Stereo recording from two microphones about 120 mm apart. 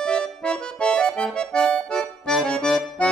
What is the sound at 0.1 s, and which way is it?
Accordion, 5° left (ahead or behind).